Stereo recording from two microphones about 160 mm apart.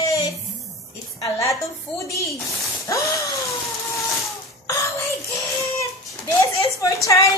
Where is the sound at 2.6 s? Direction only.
20° left (ahead or behind).